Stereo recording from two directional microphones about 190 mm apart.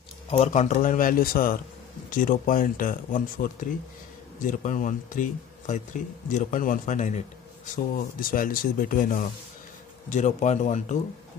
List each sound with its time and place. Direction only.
0.3 s speech: 40° left (ahead or behind)